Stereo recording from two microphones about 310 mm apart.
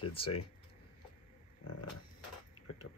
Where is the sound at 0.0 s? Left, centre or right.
Centre.